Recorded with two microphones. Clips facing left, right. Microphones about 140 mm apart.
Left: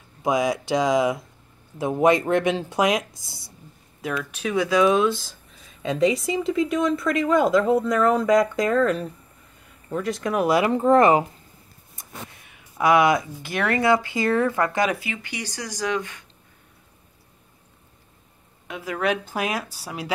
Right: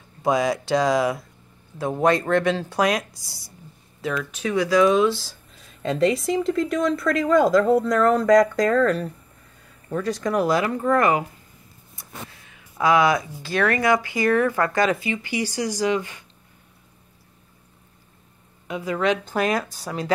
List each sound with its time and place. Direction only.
0.2 s speech: 10° left (ahead or behind)
4.0 s speech: 5° left (ahead or behind)
5.0 s a sound: centre (ahead or behind)
6.2 s speech: 5° left (ahead or behind)
10.6 s speech: 20° left (ahead or behind)
11.9 s a sound: 20° left (ahead or behind)
14.0 s speech: 25° left (ahead or behind)
15.2 s speech: 10° right (ahead or behind)
18.7 s speech: 10° left (ahead or behind)